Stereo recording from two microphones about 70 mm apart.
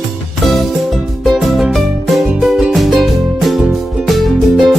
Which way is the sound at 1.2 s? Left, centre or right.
Centre.